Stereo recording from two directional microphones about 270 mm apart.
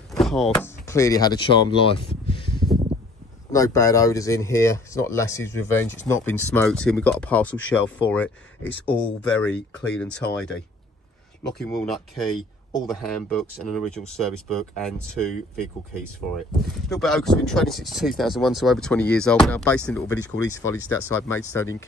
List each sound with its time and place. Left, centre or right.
0.1 s a sound: centre
0.8 s speech: centre
11.5 s speech: centre
16.9 s speech: centre